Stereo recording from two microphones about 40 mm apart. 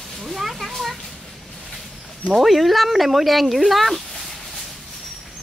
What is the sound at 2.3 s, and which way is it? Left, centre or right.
Speech, centre.